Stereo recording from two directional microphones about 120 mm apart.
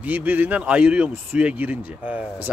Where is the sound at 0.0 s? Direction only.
15° right (ahead or behind).